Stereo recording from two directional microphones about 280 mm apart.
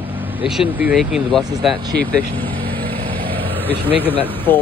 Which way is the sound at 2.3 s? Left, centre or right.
Centre.